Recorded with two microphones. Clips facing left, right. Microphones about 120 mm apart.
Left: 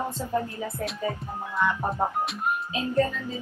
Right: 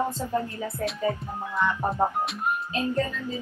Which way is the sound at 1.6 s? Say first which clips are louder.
Right 1 dB; centre (ahead or behind).